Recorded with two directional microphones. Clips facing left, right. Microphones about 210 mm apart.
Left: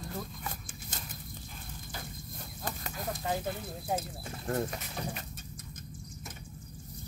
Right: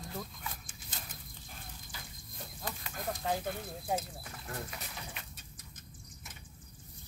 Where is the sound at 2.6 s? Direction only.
45° left (ahead or behind).